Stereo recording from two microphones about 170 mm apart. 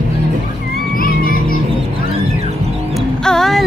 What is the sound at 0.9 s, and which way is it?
Children playing, 55° left (ahead or behind).